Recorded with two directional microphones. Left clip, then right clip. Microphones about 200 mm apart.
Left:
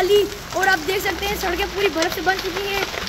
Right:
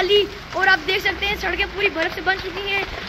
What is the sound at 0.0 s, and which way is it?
Speech, 35° left (ahead or behind).